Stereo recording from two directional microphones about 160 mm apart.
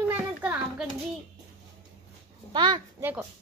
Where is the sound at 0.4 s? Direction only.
5° right (ahead or behind).